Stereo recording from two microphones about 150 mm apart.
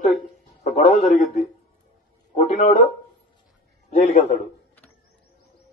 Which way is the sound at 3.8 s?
55° left (ahead or behind).